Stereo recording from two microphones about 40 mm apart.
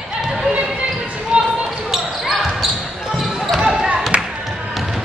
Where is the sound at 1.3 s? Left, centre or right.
Right.